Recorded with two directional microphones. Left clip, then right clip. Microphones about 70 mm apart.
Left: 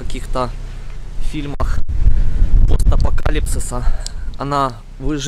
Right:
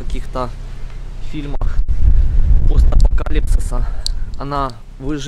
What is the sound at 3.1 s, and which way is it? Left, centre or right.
Speech, left.